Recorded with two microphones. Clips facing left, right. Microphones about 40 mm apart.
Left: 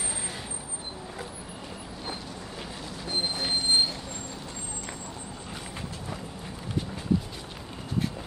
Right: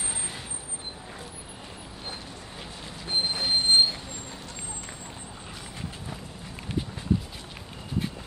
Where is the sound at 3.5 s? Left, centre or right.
Right.